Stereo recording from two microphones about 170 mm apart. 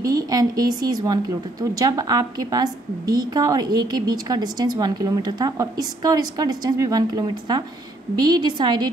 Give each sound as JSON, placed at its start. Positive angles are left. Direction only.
{"t": 0.0, "sound": "a woman's voice", "side_deg": -20}